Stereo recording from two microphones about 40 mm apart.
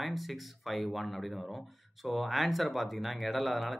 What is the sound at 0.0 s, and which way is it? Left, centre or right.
Speech, centre.